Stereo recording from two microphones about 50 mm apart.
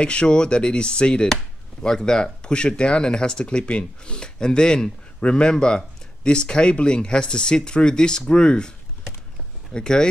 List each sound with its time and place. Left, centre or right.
0.0 s speech: left